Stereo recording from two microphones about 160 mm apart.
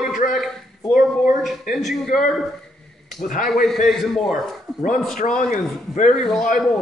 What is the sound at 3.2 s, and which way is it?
Speech, 55° left (ahead or behind).